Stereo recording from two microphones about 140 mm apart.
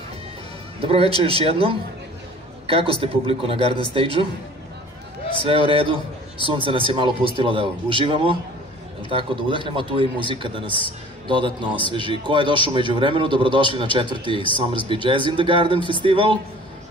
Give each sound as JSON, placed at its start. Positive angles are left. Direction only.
{"t": 0.7, "sound": "a man's voice", "side_deg": -45}
{"t": 5.5, "sound": "a man's voice", "side_deg": -40}